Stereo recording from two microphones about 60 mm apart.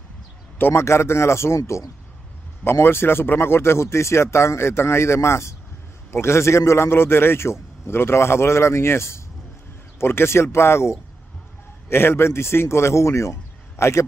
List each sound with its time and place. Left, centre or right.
0.6 s speech: left
0.8 s speech: left
1.6 s speech: left
2.6 s speech: left